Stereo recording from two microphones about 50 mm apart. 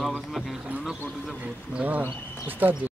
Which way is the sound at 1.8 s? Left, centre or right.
Right.